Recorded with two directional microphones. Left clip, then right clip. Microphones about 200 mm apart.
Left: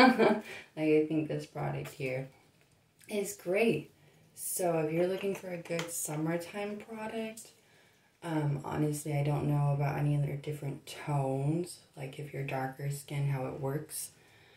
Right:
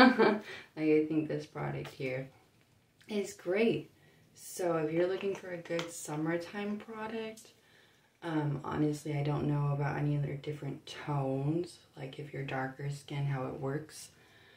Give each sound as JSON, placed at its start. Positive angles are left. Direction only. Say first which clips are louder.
{"t": 0.7, "sound": "speech", "louder": "left 1 dB", "side_deg": -10}